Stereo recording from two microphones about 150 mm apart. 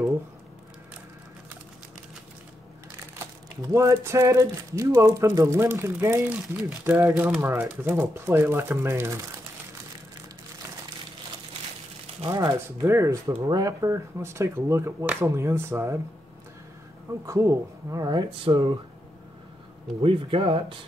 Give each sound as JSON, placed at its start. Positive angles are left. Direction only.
{"t": 3.6, "sound": "speech", "side_deg": -20}
{"t": 12.3, "sound": "speech", "side_deg": -20}
{"t": 17.3, "sound": "speech", "side_deg": -20}
{"t": 20.0, "sound": "speech", "side_deg": -35}